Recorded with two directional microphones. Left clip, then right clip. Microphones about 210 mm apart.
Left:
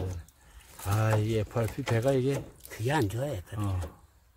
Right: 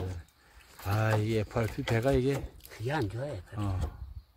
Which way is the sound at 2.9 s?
40° left (ahead or behind).